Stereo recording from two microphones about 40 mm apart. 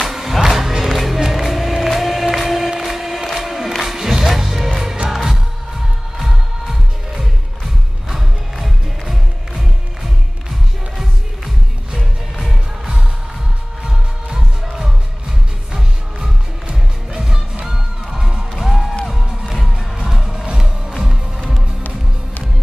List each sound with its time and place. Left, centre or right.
0.1 s music: centre
3.3 s crowd: centre
3.8 s music: centre
12.0 s music: centre
18.5 s music: centre
20.4 s music: right